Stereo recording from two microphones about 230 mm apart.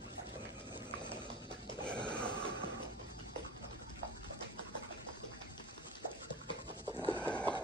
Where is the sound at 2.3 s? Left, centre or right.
Centre.